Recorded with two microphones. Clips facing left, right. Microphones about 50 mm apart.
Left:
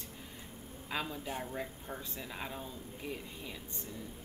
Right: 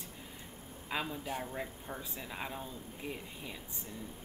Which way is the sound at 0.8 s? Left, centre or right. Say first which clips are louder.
Right 1 dB; centre.